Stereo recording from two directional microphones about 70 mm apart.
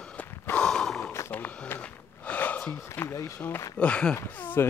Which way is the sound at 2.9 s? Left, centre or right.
Left.